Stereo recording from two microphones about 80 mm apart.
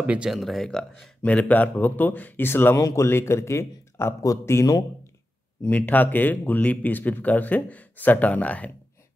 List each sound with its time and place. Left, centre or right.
0.0 s speech: centre
0.3 s speech: centre
1.2 s speech: centre; by 4.8 s left
5.7 s speech: left